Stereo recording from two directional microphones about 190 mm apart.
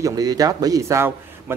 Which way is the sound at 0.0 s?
20° right (ahead or behind).